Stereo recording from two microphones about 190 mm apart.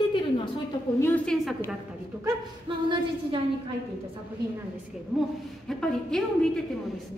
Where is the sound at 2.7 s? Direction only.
25° right (ahead or behind).